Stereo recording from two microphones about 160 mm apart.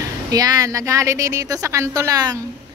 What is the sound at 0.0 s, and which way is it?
A woman's voice, 25° right (ahead or behind).